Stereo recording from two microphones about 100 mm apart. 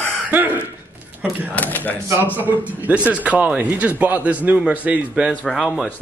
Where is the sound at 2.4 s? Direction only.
15° right (ahead or behind).